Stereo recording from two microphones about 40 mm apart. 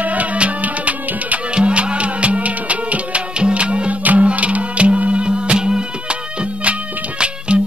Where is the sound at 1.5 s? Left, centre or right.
Right.